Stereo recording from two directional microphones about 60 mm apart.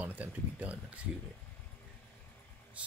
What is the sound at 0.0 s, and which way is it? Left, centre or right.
Speech, right.